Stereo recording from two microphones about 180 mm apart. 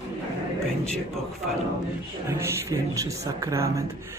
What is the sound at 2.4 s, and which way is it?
A woman's voice, 15° right (ahead or behind).